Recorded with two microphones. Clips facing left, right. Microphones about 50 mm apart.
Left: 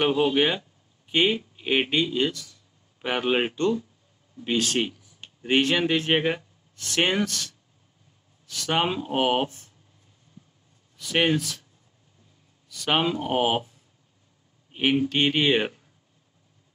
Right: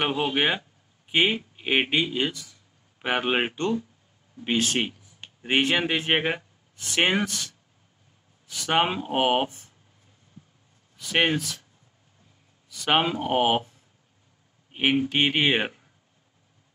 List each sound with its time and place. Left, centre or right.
0.0 s speech: centre
11.0 s speech: centre
12.6 s a man's voice: centre